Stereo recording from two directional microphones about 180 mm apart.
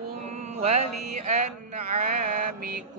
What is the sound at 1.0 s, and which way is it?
Speech, 40° right (ahead or behind).